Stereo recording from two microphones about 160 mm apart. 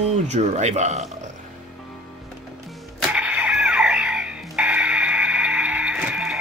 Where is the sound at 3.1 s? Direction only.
10° right (ahead or behind).